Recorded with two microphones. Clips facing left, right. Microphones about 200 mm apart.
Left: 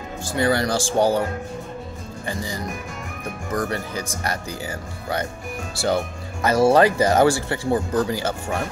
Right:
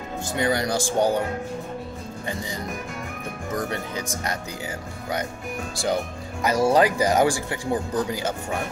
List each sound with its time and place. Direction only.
0.3 s speech: 20° right (ahead or behind)
3.5 s speech: 20° right (ahead or behind)
6.4 s speech: 15° right (ahead or behind)